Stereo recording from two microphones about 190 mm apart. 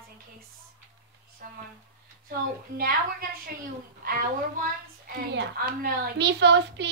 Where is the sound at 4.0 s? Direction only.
50° right (ahead or behind).